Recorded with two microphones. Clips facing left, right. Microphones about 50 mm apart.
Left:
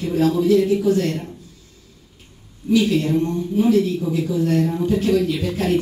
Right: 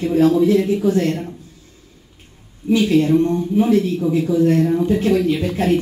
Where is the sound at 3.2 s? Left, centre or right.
Right.